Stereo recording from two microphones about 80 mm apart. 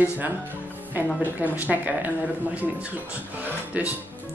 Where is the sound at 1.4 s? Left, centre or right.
Right.